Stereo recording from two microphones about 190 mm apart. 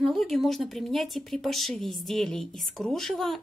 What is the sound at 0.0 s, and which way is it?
Speech, centre (ahead or behind).